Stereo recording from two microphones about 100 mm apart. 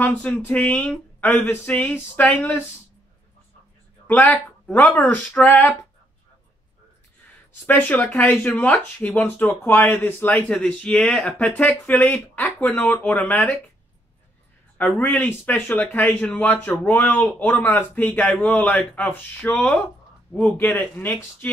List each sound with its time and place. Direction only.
0.0 s speech: 15° left (ahead or behind)
5.0 s speech: 15° left (ahead or behind)
7.6 s speech: 15° left (ahead or behind)
14.8 s speech: 15° left (ahead or behind)